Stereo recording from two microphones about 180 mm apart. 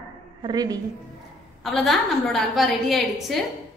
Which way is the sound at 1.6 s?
Centre (ahead or behind).